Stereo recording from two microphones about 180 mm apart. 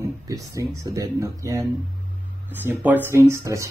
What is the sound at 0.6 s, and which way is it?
Speech, 15° right (ahead or behind).